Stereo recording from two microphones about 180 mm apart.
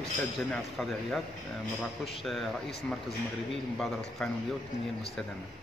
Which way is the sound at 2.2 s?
Centre (ahead or behind).